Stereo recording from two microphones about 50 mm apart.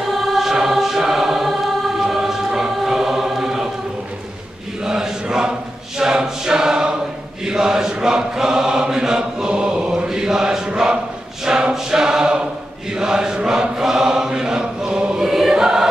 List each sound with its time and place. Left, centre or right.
0.1 s choir: centre
4.8 s chant: centre
5.9 s choir: centre
7.4 s chant: centre
11.4 s choir: centre
12.9 s chant: centre